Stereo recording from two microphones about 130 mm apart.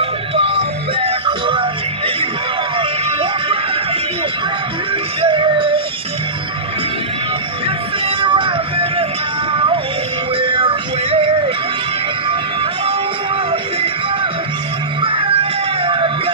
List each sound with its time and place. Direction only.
0.4 s music: 45° right (ahead or behind)
2.8 s music: 45° right (ahead or behind)
5.2 s music: 40° right (ahead or behind)
8.2 s music: 40° right (ahead or behind)
10.3 s music: 40° right (ahead or behind)
15.0 s music: 40° right (ahead or behind)